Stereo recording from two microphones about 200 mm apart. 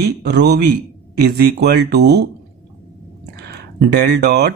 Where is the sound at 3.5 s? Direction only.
55° right (ahead or behind).